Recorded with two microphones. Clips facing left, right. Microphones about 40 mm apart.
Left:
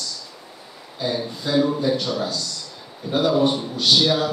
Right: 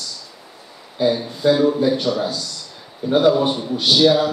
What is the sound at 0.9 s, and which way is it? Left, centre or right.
Speech, centre.